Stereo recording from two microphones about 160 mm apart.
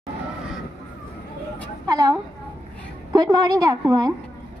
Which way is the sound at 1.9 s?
20° right (ahead or behind).